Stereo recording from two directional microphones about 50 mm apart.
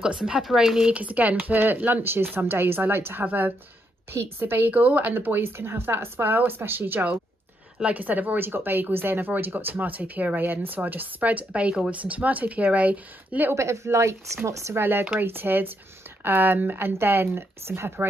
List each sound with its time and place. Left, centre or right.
0.0 s speech: centre
0.9 s speech: right
4.1 s speech: right
7.8 s speech: right
10.4 s speech: right
13.6 s speech: right
14.8 s speech: right